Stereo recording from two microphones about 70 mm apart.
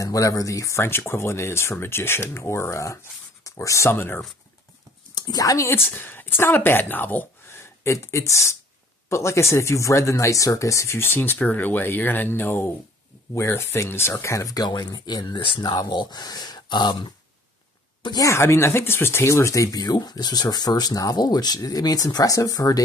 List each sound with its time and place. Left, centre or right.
0.0 s speech: left
3.9 s speech: left
5.3 s speech: left
5.9 s speech: left
7.8 s speech: left
13.3 s speech: left
14.5 s speech: left
18.3 s speech: left